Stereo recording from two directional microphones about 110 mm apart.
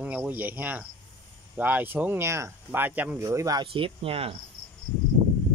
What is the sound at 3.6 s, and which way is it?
Speech, 55° right (ahead or behind).